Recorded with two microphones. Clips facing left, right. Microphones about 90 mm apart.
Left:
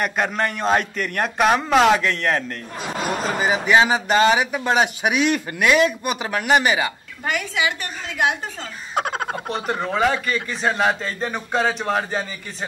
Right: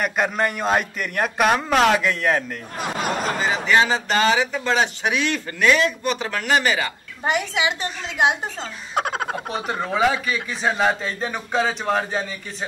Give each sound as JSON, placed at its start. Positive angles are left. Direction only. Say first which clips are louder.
{"t": 0.0, "sound": "speech", "louder": "even", "side_deg": -5}
{"t": 3.3, "sound": "speech", "louder": "left 3 dB", "side_deg": 15}
{"t": 7.2, "sound": "a woman's voice", "louder": "right 1 dB", "side_deg": -20}
{"t": 8.9, "sound": "speech", "louder": "even", "side_deg": 0}